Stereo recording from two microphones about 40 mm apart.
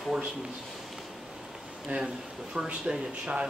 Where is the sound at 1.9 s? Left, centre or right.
Right.